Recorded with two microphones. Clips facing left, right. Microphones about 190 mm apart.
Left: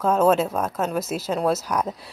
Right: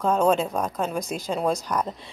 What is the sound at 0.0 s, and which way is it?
A woman's voice, 5° left (ahead or behind).